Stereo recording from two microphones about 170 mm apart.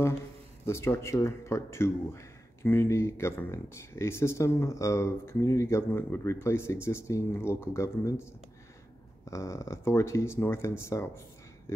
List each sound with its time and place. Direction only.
0.7 s speech: 15° left (ahead or behind)